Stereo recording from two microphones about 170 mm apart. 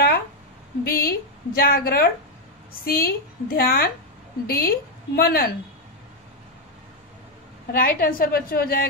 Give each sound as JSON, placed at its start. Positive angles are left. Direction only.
{"t": 0.8, "sound": "a woman's voice", "side_deg": 60}
{"t": 7.7, "sound": "a woman's voice", "side_deg": 60}